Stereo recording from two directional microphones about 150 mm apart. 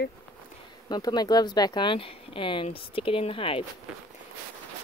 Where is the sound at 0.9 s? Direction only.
30° left (ahead or behind).